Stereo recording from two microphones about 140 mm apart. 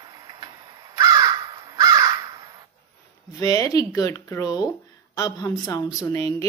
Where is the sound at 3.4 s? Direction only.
25° left (ahead or behind).